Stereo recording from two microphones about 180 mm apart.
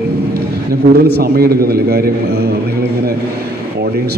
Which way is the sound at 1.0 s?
65° right (ahead or behind).